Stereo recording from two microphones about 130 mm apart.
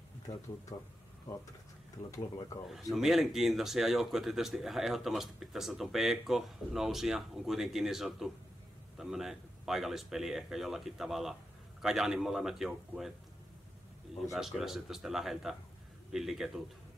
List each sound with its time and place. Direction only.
0.3 s speech: 65° left (ahead or behind)
2.7 s speech: centre (ahead or behind)
14.3 s speech: centre (ahead or behind)